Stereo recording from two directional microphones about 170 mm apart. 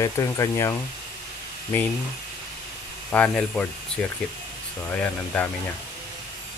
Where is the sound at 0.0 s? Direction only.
20° left (ahead or behind).